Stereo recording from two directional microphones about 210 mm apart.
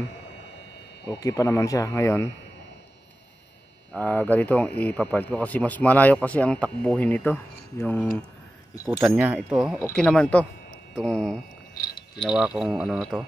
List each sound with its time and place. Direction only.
1.2 s speech: 15° left (ahead or behind)
3.9 s speech: 5° left (ahead or behind)
8.8 s speech: 5° right (ahead or behind)